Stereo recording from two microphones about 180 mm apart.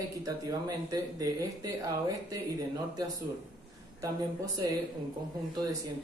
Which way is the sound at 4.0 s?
15° right (ahead or behind).